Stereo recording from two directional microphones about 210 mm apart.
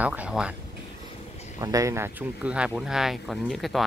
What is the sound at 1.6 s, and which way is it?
Speech, 15° right (ahead or behind).